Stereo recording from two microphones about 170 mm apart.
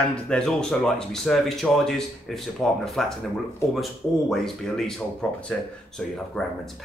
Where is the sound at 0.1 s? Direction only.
5° left (ahead or behind).